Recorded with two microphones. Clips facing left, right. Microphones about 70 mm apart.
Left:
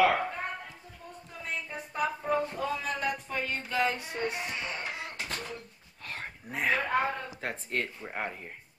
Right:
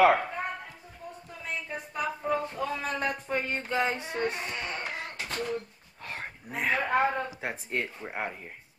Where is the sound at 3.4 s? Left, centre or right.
Right.